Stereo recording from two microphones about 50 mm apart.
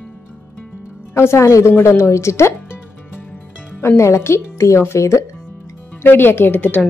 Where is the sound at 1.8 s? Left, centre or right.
Left.